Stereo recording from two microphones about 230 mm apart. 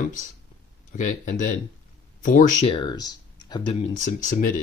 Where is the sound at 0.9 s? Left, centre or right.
Left.